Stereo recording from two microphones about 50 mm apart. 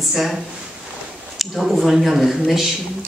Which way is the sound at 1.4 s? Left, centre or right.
Centre.